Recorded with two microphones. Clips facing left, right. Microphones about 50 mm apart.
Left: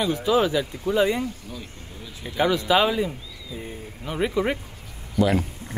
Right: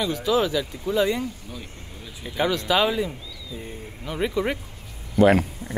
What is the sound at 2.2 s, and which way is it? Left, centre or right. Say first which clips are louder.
Speech: left 2 dB; centre.